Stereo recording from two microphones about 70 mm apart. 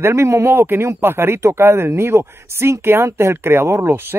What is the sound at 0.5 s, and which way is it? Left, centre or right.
Speech, right.